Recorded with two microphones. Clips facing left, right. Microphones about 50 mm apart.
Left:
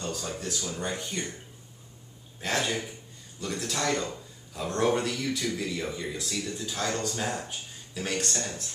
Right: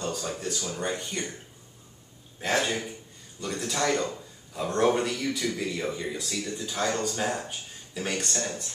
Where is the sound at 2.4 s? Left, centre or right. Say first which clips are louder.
Right 2 dB; centre.